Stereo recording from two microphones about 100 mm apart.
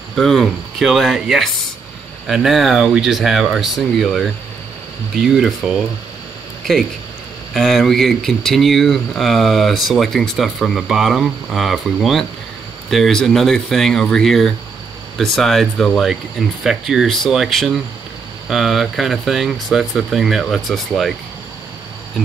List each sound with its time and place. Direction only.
0.1 s speech: centre (ahead or behind)
7.5 s speech: centre (ahead or behind)